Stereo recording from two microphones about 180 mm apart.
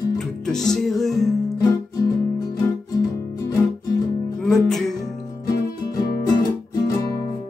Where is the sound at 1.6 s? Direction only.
20° left (ahead or behind).